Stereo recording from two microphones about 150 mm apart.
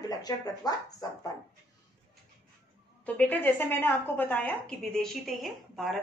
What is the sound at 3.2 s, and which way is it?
A woman's voice, 10° left (ahead or behind).